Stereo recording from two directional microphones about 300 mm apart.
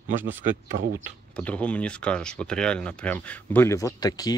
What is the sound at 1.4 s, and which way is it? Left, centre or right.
Speech, centre.